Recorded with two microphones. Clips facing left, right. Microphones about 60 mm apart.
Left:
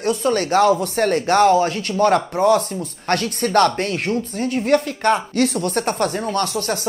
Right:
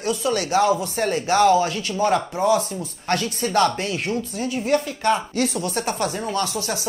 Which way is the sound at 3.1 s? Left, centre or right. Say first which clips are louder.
Left 3 dB; left.